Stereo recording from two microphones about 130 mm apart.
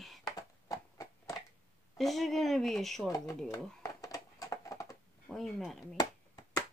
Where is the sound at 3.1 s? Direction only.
25° left (ahead or behind).